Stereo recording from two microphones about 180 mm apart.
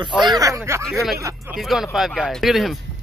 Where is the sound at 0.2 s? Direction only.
20° right (ahead or behind).